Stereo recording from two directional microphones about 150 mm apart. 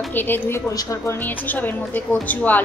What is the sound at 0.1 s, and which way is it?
A woman's voice, 15° left (ahead or behind).